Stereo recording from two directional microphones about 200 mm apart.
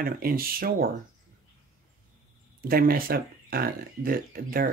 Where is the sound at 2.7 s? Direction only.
45° right (ahead or behind).